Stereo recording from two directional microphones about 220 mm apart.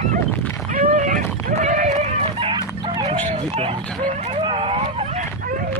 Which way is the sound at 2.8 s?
20° right (ahead or behind).